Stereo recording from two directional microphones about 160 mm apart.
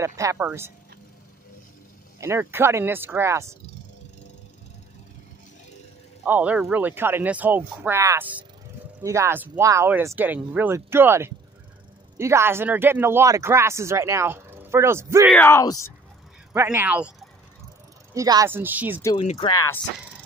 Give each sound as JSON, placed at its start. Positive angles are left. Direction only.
{"t": 0.0, "sound": "speech", "side_deg": -20}
{"t": 2.1, "sound": "speech", "side_deg": -15}
{"t": 6.2, "sound": "speech", "side_deg": -10}
{"t": 15.3, "sound": "speech", "side_deg": 15}
{"t": 16.5, "sound": "speech", "side_deg": -10}
{"t": 18.1, "sound": "speech", "side_deg": -20}
{"t": 19.1, "sound": "speech", "side_deg": 35}
{"t": 19.5, "sound": "speech", "side_deg": 20}